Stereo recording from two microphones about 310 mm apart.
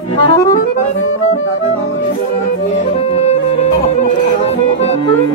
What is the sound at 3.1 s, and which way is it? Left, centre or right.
Music, centre.